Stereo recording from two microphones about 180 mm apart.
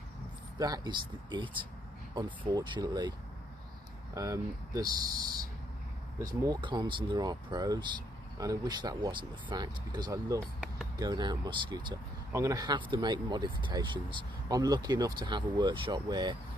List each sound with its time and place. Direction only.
0.6 s speech: 20° right (ahead or behind)